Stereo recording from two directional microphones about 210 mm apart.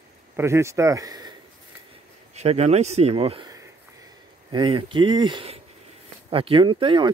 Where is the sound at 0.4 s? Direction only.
15° right (ahead or behind).